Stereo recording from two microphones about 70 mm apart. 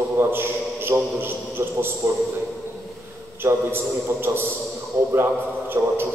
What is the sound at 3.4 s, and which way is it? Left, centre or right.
A man's voice, right.